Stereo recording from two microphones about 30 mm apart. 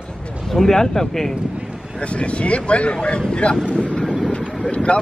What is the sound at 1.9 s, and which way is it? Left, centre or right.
Speech, left.